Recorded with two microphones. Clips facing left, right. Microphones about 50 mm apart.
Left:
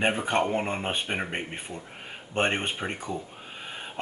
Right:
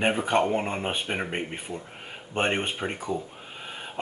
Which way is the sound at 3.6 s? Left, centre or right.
Centre.